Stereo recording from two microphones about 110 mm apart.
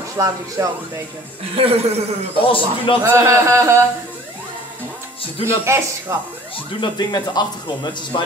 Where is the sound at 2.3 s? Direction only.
55° left (ahead or behind).